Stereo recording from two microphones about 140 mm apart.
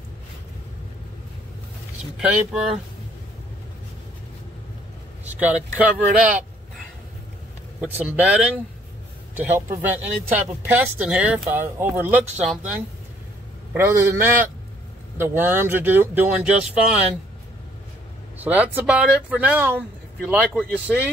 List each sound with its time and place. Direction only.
2.1 s speech: 5° right (ahead or behind)
5.2 s speech: 10° right (ahead or behind)
7.8 s speech: 10° right (ahead or behind)
13.7 s speech: 15° right (ahead or behind)
18.4 s speech: 10° right (ahead or behind)